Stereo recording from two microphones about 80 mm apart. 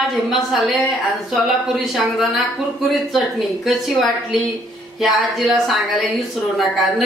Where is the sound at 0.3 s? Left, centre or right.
Centre.